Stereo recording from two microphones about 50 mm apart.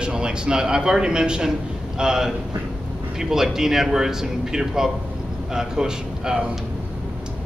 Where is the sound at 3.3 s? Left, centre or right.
Centre.